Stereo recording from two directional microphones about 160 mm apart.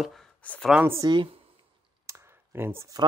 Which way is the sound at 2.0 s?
15° right (ahead or behind).